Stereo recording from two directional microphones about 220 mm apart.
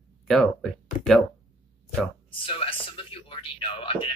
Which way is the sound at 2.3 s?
25° left (ahead or behind).